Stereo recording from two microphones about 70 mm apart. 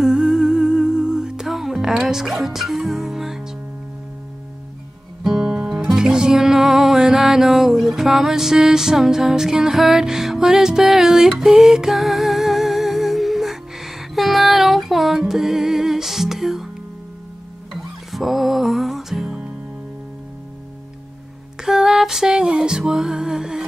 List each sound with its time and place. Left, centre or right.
0.0 s music: centre
5.2 s music: centre
17.7 s music: centre
21.6 s music: centre